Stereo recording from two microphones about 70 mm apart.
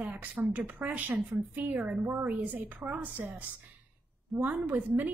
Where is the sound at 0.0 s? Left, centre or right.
Right.